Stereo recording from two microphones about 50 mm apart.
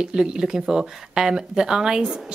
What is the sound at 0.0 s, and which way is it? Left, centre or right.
Speech, centre.